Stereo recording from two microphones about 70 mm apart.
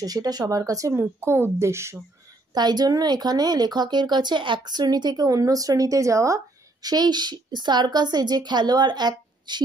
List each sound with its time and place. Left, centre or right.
0.0 s speech: right
0.9 s speech: right
2.5 s speech: right